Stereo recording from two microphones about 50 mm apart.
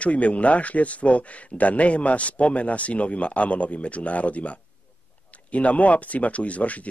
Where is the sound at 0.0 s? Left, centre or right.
Left.